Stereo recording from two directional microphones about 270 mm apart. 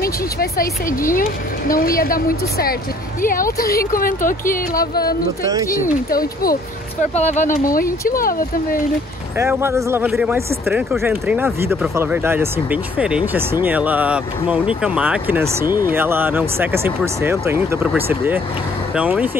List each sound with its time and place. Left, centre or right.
0.0 s a woman's voice: left
9.4 s speech: centre